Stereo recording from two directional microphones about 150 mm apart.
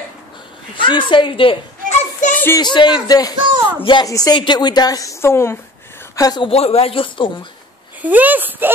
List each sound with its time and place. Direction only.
0.7 s a woman's voice: 35° left (ahead or behind)
2.3 s a sound: 15° left (ahead or behind)
2.6 s a woman's voice: 30° left (ahead or behind)
3.3 s speech: 35° right (ahead or behind)
3.8 s a woman's voice: 30° left (ahead or behind)
6.5 s a woman's voice: 45° left (ahead or behind)
8.0 s speech: 10° right (ahead or behind)